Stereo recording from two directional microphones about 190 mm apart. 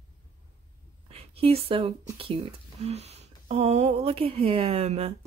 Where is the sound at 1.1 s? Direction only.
30° right (ahead or behind).